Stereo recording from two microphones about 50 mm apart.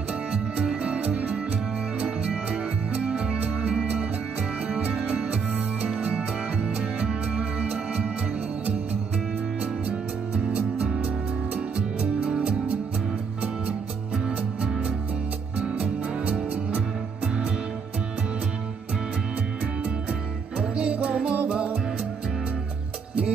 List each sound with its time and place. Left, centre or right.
0.8 s music: right
11.7 s music: right
14.1 s music: centre
19.6 s music: right